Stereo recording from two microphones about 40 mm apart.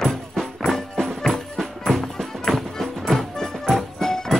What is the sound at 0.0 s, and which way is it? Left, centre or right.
Music, centre.